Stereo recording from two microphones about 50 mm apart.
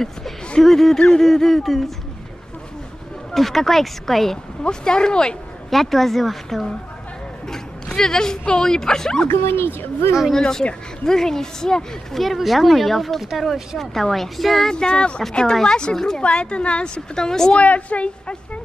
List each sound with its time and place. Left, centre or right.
0.6 s speech: centre
1.2 s speech: centre
3.3 s speech: centre
4.6 s speech: centre
5.7 s speech: centre
9.3 s speech: left
10.3 s speech: centre
14.7 s speech: centre
17.6 s speech: left